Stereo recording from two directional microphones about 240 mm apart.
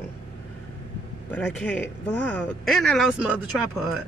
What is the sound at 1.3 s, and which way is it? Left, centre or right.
Speech, centre.